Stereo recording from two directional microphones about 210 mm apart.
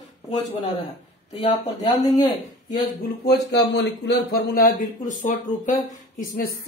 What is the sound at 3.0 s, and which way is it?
Speech, 50° left (ahead or behind).